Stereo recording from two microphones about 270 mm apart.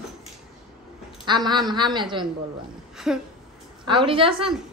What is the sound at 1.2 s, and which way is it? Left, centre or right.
A woman's voice, centre.